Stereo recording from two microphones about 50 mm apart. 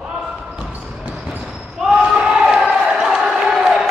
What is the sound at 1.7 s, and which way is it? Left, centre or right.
Battle cry, centre.